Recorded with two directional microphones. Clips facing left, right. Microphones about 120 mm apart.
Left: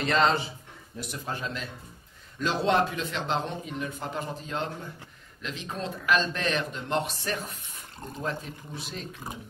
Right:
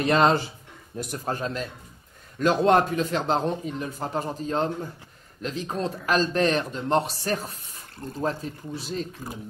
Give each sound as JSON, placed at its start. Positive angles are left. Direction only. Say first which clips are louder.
{"t": 0.9, "sound": "speech", "louder": "right 5 dB", "side_deg": -45}